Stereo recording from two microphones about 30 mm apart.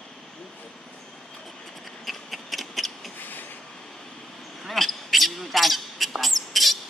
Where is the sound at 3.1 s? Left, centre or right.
Left.